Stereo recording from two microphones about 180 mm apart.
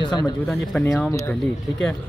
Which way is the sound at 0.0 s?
25° left (ahead or behind).